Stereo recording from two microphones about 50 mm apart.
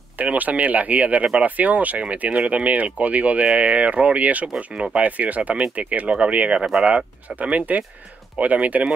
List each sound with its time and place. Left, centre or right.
0.2 s speech: right